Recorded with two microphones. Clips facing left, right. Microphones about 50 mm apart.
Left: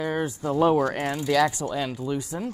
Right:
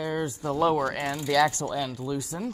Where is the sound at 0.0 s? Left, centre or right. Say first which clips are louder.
Left 2 dB; left.